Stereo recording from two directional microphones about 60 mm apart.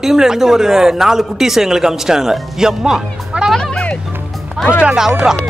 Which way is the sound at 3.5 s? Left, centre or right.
Centre.